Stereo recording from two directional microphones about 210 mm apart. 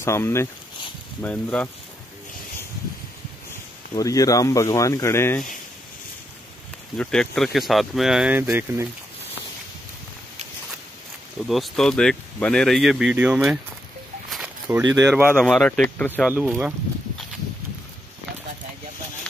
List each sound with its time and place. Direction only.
0.0 s speech: 10° left (ahead or behind)
3.9 s speech: 15° left (ahead or behind)
7.0 s speech: 5° left (ahead or behind); by 8.8 s 10° right (ahead or behind)
11.4 s speech: centre (ahead or behind)
14.3 s a sound: 5° right (ahead or behind)
15.0 s speech: 10° right (ahead or behind)
15.3 s speech: 5° left (ahead or behind)